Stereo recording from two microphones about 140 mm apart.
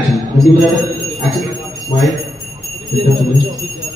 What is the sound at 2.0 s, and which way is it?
Speech, centre (ahead or behind).